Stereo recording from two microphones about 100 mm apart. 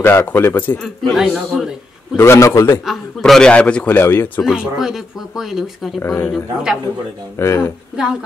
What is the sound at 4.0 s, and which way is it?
Speech, 20° left (ahead or behind).